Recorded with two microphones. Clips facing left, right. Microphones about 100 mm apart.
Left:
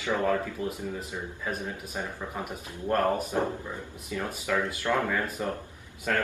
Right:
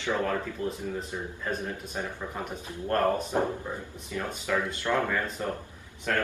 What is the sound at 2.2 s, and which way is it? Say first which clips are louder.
Speech: even; 10° left (ahead or behind).